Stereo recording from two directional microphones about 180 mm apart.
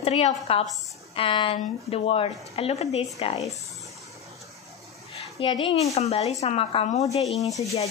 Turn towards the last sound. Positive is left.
turn(degrees=0)  # may be behind; listen again after turning